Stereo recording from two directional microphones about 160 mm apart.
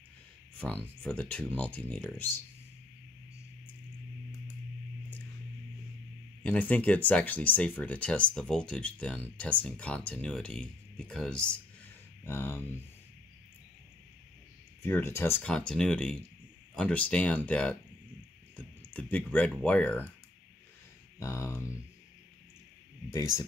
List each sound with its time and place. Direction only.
0.6 s speech: 5° left (ahead or behind)
6.4 s speech: 10° left (ahead or behind)
14.8 s speech: 15° left (ahead or behind)
21.2 s speech: 15° left (ahead or behind)